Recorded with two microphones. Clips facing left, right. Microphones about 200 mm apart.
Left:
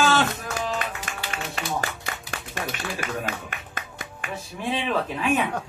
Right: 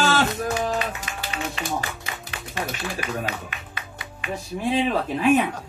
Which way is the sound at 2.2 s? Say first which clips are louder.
Right 2 dB; 45° left (ahead or behind).